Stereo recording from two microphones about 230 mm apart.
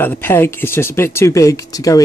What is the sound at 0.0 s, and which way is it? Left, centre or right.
Speech, centre.